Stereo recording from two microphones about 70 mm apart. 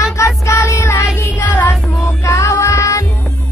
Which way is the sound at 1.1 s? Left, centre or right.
Left.